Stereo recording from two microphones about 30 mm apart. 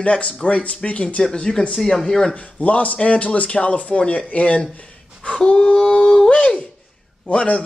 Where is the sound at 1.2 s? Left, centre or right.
Left.